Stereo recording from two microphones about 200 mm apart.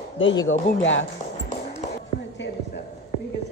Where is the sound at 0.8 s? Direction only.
70° left (ahead or behind).